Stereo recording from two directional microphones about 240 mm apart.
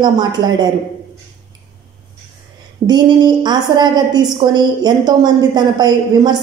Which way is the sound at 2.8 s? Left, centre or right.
Centre.